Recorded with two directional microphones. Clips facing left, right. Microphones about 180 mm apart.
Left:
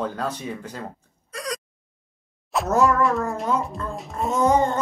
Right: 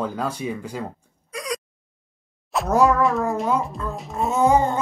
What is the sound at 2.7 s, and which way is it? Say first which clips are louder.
Speech: right 2 dB; 10° right (ahead or behind).